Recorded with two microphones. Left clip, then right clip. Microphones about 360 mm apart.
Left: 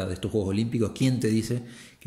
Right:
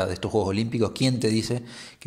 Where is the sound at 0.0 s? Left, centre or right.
Centre.